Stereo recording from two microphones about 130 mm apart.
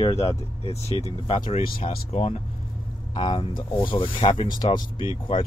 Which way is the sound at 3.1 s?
40° left (ahead or behind).